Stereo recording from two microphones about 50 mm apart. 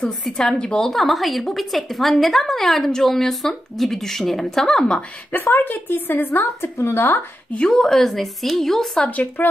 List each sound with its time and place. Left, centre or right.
0.0 s a woman's voice: centre
0.8 s a woman's voice: centre
5.5 s speech: left
6.4 s a woman's voice: left
7.7 s a woman's voice: centre
9.0 s speech: left